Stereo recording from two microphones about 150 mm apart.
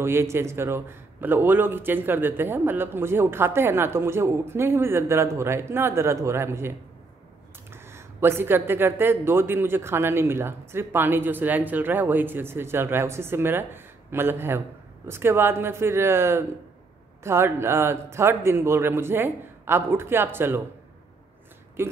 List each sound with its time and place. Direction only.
0.0 s a man's voice: 15° right (ahead or behind)
7.7 s a man's voice: 15° right (ahead or behind)
21.8 s a man's voice: 15° right (ahead or behind)